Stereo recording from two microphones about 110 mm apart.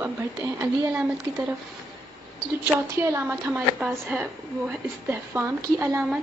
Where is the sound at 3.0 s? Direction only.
20° right (ahead or behind).